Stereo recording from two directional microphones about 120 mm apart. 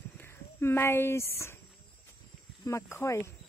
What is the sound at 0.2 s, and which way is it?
Speech, 20° left (ahead or behind).